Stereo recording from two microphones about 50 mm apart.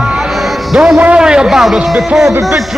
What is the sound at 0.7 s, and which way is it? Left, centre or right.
A man's voice, centre.